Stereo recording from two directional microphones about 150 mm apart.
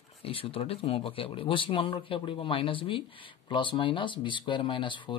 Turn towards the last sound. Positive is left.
turn(degrees=30)  # may be behind; listen again after turning